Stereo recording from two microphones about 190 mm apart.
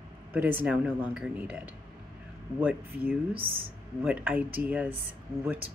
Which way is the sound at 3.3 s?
30° right (ahead or behind).